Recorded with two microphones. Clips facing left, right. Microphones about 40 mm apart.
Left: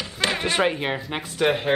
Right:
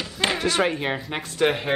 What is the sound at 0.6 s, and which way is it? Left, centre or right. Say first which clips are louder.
Speech: left 1 dB; centre.